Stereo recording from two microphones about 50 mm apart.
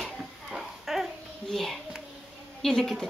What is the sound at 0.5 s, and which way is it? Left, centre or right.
Babbling, centre.